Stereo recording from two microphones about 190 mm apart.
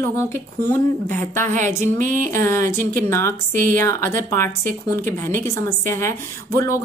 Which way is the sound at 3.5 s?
45° right (ahead or behind).